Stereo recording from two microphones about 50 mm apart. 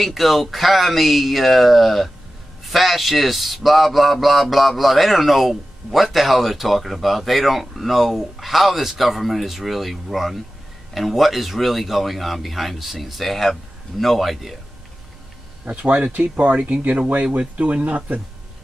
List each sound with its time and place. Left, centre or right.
0.0 s a man's voice: centre
15.6 s speech: right